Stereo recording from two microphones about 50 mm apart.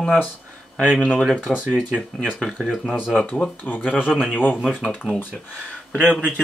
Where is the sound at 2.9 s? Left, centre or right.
Centre.